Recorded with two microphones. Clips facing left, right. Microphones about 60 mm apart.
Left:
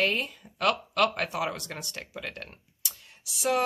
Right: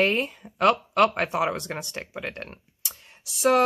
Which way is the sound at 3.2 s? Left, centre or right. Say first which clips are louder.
Right 6 dB; right.